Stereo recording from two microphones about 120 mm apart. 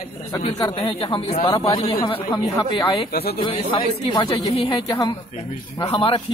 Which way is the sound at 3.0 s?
45° left (ahead or behind).